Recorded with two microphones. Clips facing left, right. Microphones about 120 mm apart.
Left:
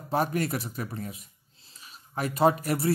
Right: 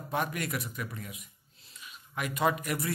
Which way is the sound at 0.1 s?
35° left (ahead or behind).